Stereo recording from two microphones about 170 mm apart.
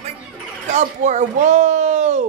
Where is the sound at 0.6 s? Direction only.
45° right (ahead or behind).